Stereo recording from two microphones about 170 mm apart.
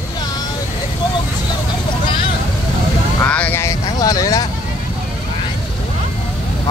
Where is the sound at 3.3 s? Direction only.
10° left (ahead or behind).